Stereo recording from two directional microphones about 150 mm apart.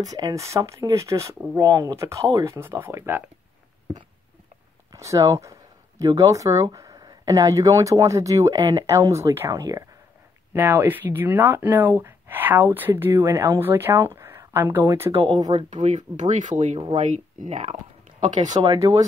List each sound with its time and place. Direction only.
0.1 s speech: 20° right (ahead or behind)
4.9 s speech: 20° right (ahead or behind)
15.2 s speech: 30° right (ahead or behind)
15.8 s speech: 55° right (ahead or behind)
18.2 s speech: 30° right (ahead or behind)